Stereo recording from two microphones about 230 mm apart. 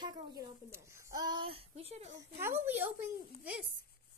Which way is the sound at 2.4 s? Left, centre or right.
Centre.